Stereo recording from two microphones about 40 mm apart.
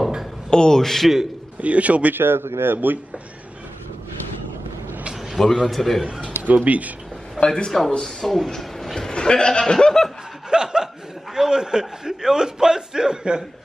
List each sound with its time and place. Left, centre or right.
0.5 s a man's voice: centre
1.6 s speech: right
2.1 s a man's voice: right
5.4 s a man's voice: centre
6.5 s speech: right
7.3 s a man's voice: left
8.0 s speech: centre
8.5 s a sound: centre
9.1 s speech: left
10.5 s chuckle: centre
11.3 s a man's voice: centre